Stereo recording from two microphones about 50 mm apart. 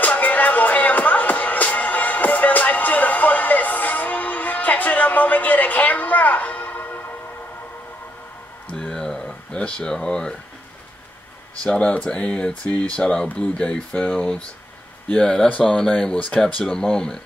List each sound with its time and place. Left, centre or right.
0.0 s music: left
8.7 s a sound: centre
11.6 s speech: left